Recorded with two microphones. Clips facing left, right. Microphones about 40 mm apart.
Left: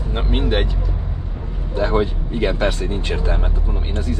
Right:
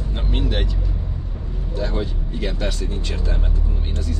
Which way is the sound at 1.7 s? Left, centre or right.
Left.